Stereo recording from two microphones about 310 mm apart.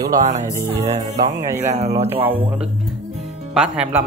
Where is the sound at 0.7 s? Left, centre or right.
Right.